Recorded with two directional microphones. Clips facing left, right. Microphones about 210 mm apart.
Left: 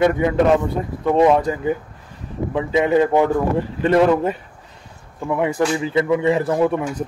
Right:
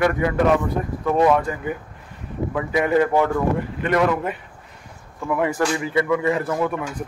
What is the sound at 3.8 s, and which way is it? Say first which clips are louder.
Speech: left 7 dB; 30° left (ahead or behind).